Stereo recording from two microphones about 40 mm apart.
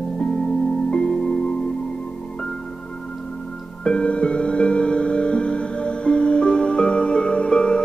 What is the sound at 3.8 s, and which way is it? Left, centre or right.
Music, left.